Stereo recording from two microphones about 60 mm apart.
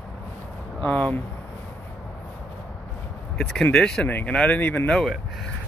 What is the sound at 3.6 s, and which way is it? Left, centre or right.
Speech, centre.